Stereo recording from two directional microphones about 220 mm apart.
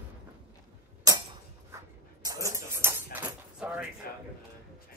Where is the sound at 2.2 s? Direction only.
15° right (ahead or behind).